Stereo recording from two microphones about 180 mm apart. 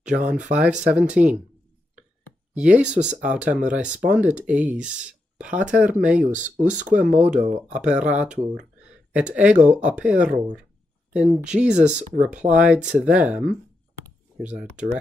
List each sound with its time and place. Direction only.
0.5 s speech: 5° right (ahead or behind)
2.5 s speech: 5° right (ahead or behind)
3.0 s speech: 40° right (ahead or behind)
3.3 s speech: 5° right (ahead or behind)
6.3 s speech: 45° right (ahead or behind)
7.2 s speech: 5° right (ahead or behind)